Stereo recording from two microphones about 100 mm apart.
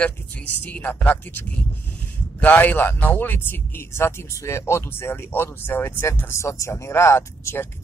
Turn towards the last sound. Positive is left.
turn(degrees=25)  # may be behind; listen again after turning